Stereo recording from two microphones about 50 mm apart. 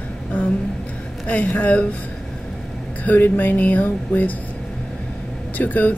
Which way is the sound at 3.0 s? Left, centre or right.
Left.